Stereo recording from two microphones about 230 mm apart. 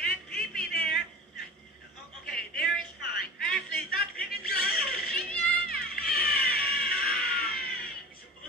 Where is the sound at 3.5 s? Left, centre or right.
Left.